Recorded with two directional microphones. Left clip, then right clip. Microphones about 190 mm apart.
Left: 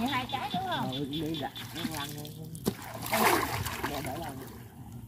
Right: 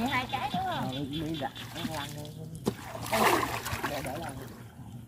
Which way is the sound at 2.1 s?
30° left (ahead or behind).